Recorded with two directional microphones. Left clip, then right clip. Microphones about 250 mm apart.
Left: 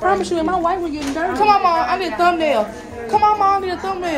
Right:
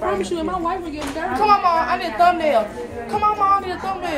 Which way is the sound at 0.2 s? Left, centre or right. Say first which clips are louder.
Left 4 dB; left.